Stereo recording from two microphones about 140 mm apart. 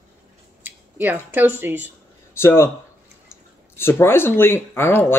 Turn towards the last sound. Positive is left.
turn(degrees=15)  # may be behind; listen again after turning